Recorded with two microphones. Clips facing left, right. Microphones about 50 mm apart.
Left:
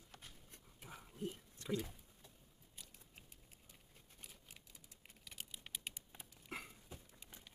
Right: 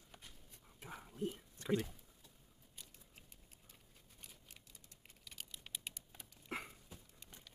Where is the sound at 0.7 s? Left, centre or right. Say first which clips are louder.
Right 4 dB; centre.